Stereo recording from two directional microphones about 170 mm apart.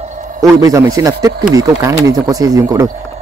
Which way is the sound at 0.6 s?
20° right (ahead or behind).